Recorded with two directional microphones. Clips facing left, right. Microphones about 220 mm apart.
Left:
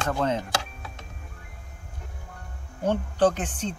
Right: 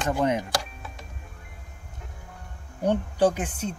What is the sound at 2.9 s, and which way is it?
Speech, 10° right (ahead or behind).